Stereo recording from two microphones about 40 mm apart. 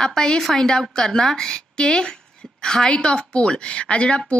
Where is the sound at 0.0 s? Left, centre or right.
Centre.